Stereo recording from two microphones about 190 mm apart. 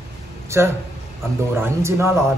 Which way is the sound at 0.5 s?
15° right (ahead or behind).